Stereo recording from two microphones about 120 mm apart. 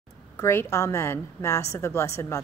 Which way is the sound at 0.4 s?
20° left (ahead or behind).